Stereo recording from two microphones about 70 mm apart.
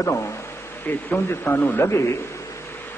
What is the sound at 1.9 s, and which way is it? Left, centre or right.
Speech, left.